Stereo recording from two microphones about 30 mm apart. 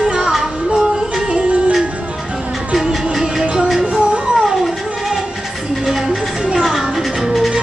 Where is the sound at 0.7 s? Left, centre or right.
Right.